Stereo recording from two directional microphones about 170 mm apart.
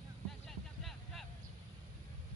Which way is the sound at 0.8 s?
Centre (ahead or behind).